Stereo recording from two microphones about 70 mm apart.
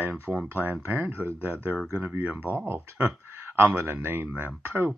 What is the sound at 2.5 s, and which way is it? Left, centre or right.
Speech, right.